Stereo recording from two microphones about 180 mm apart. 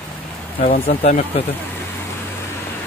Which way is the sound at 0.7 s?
40° left (ahead or behind).